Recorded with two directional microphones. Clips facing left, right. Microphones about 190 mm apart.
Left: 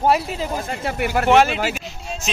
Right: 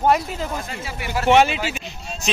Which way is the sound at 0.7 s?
55° left (ahead or behind).